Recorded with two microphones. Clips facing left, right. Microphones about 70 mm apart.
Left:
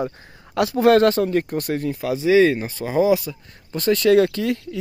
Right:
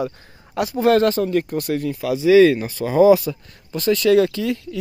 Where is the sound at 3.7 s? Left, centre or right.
Left.